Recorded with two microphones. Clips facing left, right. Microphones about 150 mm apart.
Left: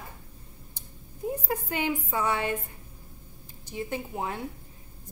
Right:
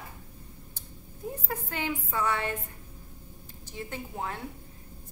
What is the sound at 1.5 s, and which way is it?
A woman's voice, 15° left (ahead or behind).